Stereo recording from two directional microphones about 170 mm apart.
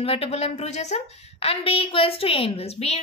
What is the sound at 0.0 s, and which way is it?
A woman's voice, 35° left (ahead or behind).